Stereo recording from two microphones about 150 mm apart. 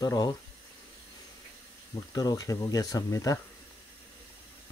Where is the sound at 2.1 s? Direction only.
25° left (ahead or behind).